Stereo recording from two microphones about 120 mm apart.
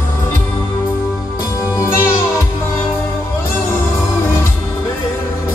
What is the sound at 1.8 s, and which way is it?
Music, 25° left (ahead or behind).